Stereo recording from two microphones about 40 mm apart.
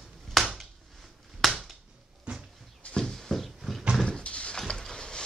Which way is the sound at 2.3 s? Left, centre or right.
Right.